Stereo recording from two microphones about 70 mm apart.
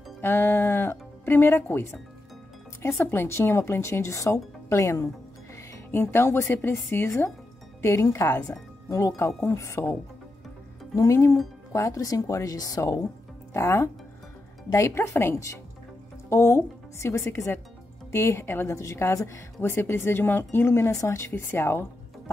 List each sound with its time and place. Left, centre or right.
0.2 s a woman's voice: left
5.9 s a woman's voice: left
8.5 s a woman's voice: left
11.0 s speech: left
13.5 s a woman's voice: left